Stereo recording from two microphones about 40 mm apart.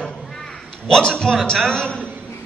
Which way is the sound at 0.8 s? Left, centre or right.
Centre.